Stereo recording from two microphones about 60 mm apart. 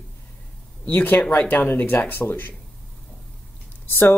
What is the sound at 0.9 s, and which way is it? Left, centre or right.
Speech, left.